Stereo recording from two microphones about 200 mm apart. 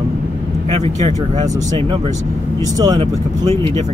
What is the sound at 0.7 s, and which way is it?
Speech, 30° right (ahead or behind).